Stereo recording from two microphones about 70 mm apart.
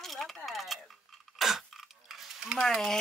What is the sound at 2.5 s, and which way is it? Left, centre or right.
Speech, centre.